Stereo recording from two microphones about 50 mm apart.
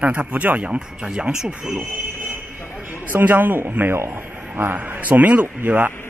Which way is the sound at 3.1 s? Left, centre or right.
Right.